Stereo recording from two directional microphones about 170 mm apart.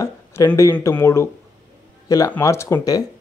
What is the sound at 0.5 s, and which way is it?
Speech, 10° left (ahead or behind).